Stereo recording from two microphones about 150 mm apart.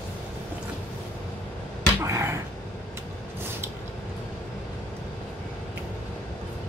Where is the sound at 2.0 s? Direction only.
20° right (ahead or behind).